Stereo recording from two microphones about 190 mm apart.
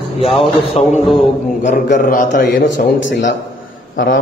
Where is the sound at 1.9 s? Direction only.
45° left (ahead or behind).